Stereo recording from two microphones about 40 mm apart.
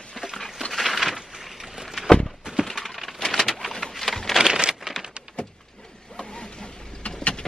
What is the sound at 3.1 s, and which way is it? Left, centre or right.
Bird, centre.